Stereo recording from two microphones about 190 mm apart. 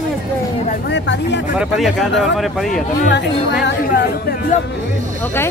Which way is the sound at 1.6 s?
Centre (ahead or behind).